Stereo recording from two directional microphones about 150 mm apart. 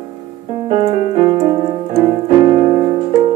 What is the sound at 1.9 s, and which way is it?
Piano, 30° right (ahead or behind).